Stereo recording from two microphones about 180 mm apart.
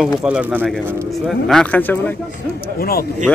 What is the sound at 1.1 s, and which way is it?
Speech, centre (ahead or behind).